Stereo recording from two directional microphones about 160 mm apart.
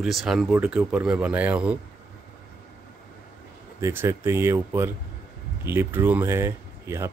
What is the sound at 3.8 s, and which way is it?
Speech, 15° right (ahead or behind).